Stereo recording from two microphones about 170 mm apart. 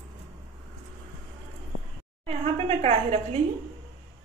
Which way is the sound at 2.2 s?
35° right (ahead or behind).